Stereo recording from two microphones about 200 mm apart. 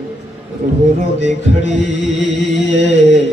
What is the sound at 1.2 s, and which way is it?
Music, 65° left (ahead or behind).